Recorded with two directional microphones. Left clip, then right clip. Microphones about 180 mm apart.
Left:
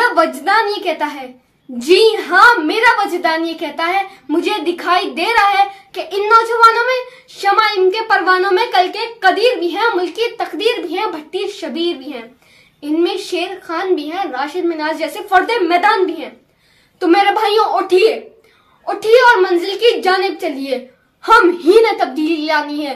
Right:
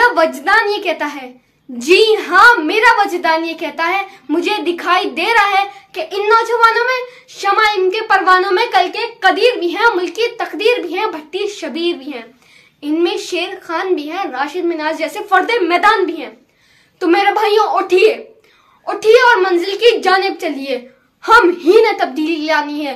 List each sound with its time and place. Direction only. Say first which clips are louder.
0.0 s a woman's voice: right 1 dB; 5° right (ahead or behind)